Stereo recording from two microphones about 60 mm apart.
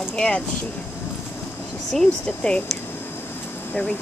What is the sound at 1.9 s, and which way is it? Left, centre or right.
Speech, centre.